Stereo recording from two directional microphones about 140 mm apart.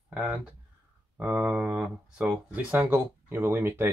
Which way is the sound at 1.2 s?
10° right (ahead or behind).